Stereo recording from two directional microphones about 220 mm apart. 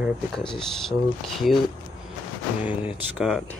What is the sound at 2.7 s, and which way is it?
Speech, 5° right (ahead or behind).